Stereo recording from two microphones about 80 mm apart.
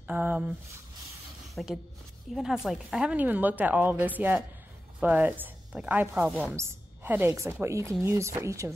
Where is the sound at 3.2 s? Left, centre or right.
Right.